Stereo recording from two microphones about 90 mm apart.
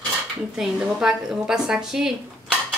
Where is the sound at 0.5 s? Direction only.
5° right (ahead or behind).